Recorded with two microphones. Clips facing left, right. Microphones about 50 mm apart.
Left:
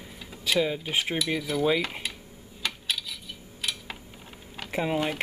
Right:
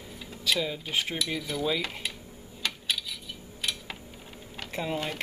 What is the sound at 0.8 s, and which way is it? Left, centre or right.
Speech, centre.